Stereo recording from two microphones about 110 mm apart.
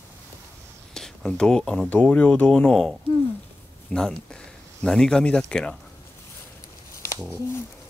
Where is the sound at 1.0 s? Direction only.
5° left (ahead or behind).